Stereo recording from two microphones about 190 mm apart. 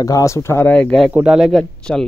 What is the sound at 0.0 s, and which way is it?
Speech, 15° left (ahead or behind).